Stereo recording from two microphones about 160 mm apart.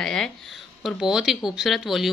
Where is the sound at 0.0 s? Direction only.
5° left (ahead or behind).